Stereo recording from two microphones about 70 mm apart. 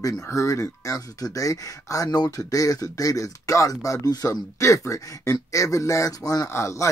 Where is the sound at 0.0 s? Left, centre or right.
Left.